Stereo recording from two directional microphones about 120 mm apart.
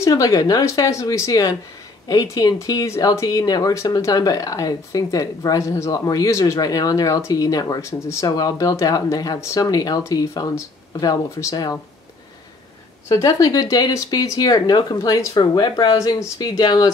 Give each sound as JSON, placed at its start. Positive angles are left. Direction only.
{"t": 0.0, "sound": "speech", "side_deg": 30}
{"t": 13.1, "sound": "speech", "side_deg": 30}